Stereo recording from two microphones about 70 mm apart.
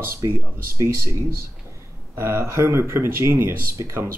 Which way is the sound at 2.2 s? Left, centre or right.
Right.